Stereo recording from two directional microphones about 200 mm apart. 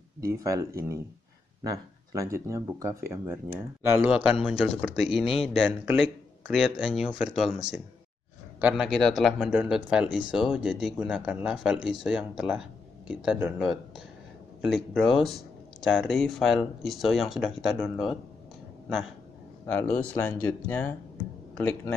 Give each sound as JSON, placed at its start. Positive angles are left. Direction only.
{"t": 0.4, "sound": "speech", "side_deg": -15}
{"t": 8.5, "sound": "speech", "side_deg": -5}
{"t": 19.6, "sound": "speech", "side_deg": 10}